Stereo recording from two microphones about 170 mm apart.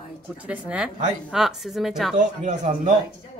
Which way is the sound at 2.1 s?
50° right (ahead or behind).